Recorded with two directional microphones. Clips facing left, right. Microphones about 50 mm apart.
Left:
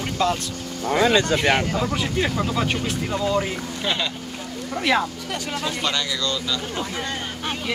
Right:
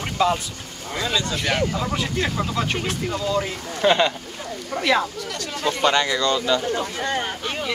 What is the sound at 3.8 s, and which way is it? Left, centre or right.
Speech, right.